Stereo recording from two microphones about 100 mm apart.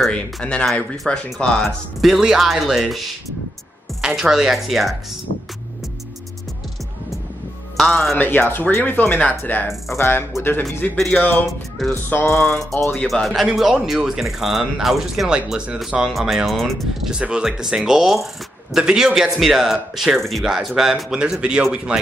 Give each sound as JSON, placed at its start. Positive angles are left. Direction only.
{"t": 0.0, "sound": "speech", "side_deg": 10}
{"t": 2.0, "sound": "speech", "side_deg": -5}
{"t": 4.1, "sound": "speech", "side_deg": -5}
{"t": 7.7, "sound": "speech", "side_deg": 0}
{"t": 8.2, "sound": "speech", "side_deg": 20}
{"t": 12.3, "sound": "speech", "side_deg": 5}
{"t": 17.1, "sound": "speech", "side_deg": -10}